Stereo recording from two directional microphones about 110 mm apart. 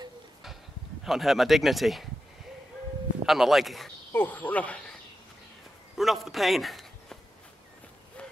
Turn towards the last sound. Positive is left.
turn(degrees=0)  # may be behind; listen again after turning